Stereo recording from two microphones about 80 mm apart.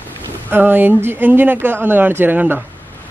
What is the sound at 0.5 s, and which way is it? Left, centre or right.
A man's voice, right.